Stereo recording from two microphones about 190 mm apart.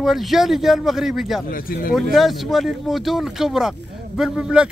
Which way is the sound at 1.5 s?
50° left (ahead or behind).